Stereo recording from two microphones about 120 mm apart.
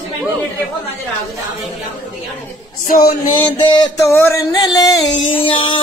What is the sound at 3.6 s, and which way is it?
Speech, 40° left (ahead or behind).